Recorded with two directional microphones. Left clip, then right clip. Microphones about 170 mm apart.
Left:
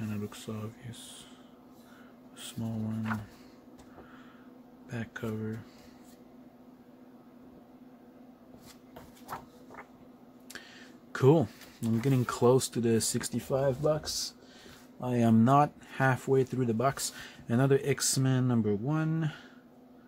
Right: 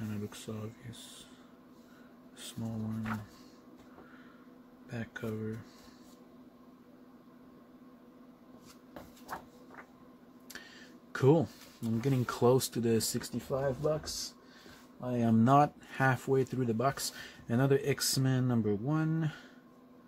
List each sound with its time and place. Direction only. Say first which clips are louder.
0.0 s a sound: left 3 dB; 5° left (ahead or behind)
2.3 s a sound: left 3 dB; 10° left (ahead or behind)
4.8 s speech: left 2 dB; 5° left (ahead or behind)
11.1 s speech: left 3 dB; 10° left (ahead or behind)
13.5 s a man's voice: left 4 dB; 25° left (ahead or behind)
15.3 s speech: even; centre (ahead or behind)